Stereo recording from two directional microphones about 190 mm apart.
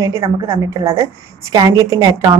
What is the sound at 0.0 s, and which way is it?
A woman's voice, 15° right (ahead or behind).